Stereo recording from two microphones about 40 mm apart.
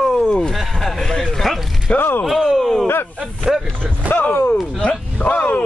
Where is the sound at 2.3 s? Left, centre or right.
Centre.